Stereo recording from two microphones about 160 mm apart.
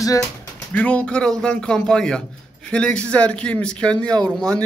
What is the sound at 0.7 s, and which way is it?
A man's voice, 10° left (ahead or behind).